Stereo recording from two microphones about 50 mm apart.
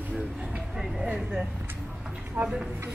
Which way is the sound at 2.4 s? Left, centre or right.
Right.